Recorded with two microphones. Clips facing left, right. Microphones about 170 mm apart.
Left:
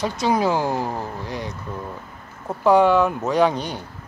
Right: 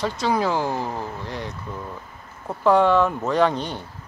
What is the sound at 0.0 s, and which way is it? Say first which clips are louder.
Speech: left 2 dB; 15° left (ahead or behind).